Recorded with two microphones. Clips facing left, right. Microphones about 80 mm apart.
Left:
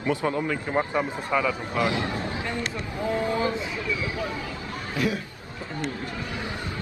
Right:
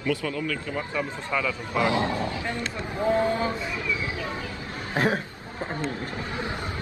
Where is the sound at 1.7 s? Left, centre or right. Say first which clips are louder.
Right 2 dB; right.